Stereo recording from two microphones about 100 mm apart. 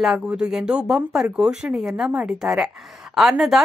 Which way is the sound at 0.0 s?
5° right (ahead or behind).